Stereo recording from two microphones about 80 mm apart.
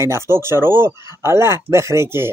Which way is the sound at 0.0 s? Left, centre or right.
Right.